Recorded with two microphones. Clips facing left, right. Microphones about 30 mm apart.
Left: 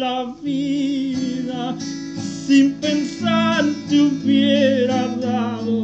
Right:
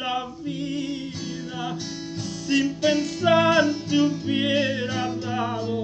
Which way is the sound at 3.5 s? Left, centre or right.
Centre.